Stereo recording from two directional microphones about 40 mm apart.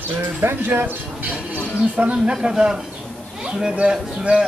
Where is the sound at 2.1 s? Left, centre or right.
Right.